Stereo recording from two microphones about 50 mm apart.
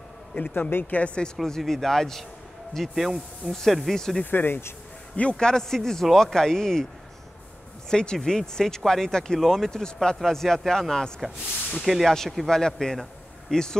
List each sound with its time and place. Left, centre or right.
0.3 s speech: left
0.7 s speech: left
0.9 s speech: left
1.4 s speech: centre
4.3 s speech: left
5.3 s speech: centre
7.9 s speech: centre
11.1 s speech: centre
12.4 s speech: centre